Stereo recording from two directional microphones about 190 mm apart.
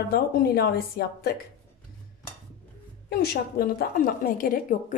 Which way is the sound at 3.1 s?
55° left (ahead or behind).